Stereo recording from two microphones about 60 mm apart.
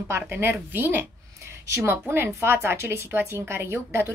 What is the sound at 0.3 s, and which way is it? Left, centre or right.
A woman's voice, right.